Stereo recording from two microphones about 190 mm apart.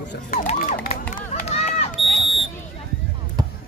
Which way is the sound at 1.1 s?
35° left (ahead or behind).